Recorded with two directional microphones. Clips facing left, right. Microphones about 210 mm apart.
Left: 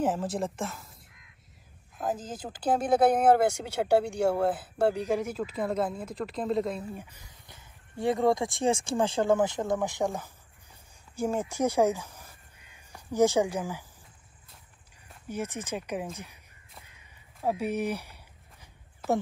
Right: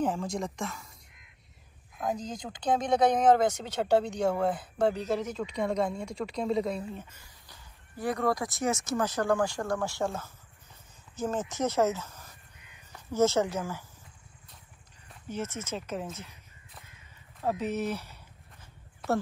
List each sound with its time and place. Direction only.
0.0 s a woman's voice: 5° left (ahead or behind)
2.0 s speech: 5° left (ahead or behind)
7.0 s speech: 15° left (ahead or behind)
15.0 s speech: 10° left (ahead or behind)
17.4 s a sound: 10° left (ahead or behind)